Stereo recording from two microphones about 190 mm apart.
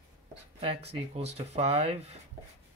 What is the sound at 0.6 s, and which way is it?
Speech, 30° right (ahead or behind).